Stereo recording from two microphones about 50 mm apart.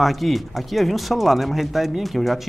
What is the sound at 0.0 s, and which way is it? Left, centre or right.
Speech, centre.